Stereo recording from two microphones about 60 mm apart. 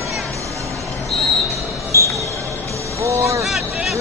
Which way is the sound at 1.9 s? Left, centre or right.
Left.